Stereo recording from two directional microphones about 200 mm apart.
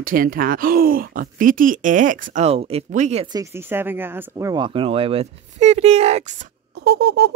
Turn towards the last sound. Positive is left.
turn(degrees=-55)  # may be behind; listen again after turning